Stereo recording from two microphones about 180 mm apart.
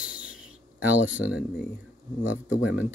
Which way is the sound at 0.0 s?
5° right (ahead or behind).